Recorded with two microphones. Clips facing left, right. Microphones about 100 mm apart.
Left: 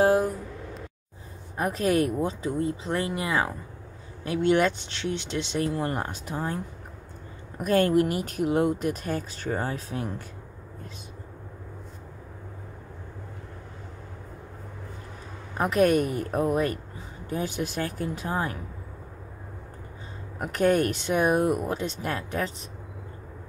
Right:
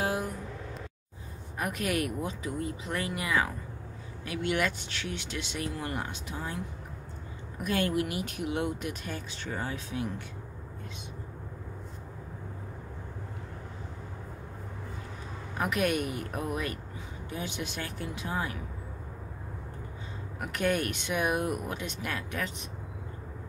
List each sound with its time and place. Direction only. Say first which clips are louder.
0.0 s a sound: left 10 dB; 35° left (ahead or behind)
1.6 s speech: left 7 dB; 30° left (ahead or behind)
15.5 s speech: left 7 dB; 35° left (ahead or behind)
20.3 s speech: left 7 dB; 35° left (ahead or behind)